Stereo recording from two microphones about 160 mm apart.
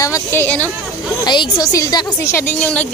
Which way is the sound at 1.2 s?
25° left (ahead or behind).